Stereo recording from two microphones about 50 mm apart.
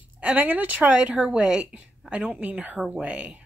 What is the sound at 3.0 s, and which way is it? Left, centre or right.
Speech, right.